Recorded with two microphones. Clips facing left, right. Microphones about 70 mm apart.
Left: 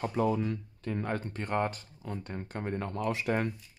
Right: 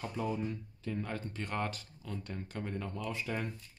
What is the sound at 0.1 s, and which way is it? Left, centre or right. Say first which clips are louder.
Speech: left 6 dB; left.